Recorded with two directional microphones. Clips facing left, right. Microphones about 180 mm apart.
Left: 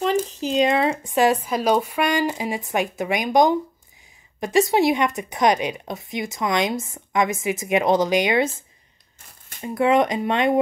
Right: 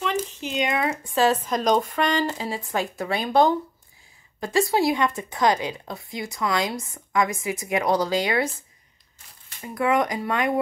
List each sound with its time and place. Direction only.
0.0 s a sound: 35° left (ahead or behind)
1.1 s speech: 15° left (ahead or behind)
9.6 s speech: 25° left (ahead or behind)